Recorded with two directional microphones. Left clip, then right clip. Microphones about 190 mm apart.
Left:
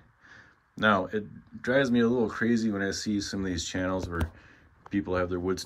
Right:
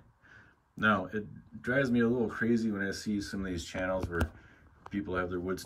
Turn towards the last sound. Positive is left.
turn(degrees=10)  # may be behind; listen again after turning